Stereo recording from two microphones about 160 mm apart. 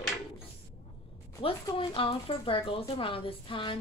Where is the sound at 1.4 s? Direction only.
30° left (ahead or behind).